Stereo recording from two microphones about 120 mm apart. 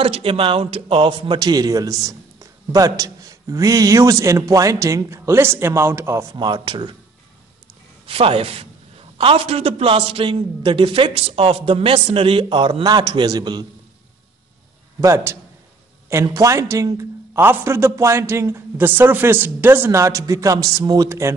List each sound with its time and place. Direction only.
0.0 s a man's voice: 50° right (ahead or behind); by 6.2 s 20° right (ahead or behind)
6.3 s speech: 40° right (ahead or behind)
8.1 s a man's voice: 50° right (ahead or behind)
15.0 s a man's voice: 25° right (ahead or behind)
21.1 s a man's voice: 25° right (ahead or behind)